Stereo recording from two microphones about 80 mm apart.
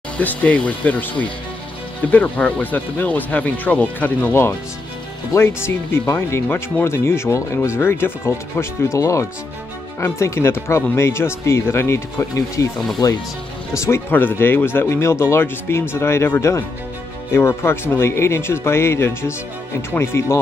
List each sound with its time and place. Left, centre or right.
0.2 s speech: centre
8.5 s speech: left
13.0 s speech: left
13.7 s speech: left